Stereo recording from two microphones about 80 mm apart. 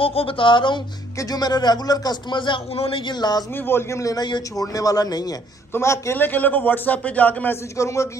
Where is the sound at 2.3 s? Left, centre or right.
Left.